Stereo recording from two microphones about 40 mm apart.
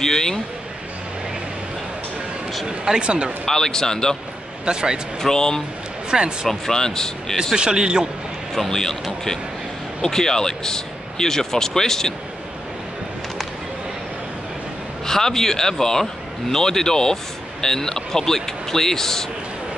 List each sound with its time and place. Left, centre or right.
0.0 s a man's voice: centre
3.0 s a man's voice: right
3.4 s a man's voice: centre
4.6 s a man's voice: right
5.2 s a man's voice: centre
6.0 s speech: right
6.6 s a man's voice: centre
7.5 s a man's voice: right
8.5 s a man's voice: centre
15.0 s a man's voice: centre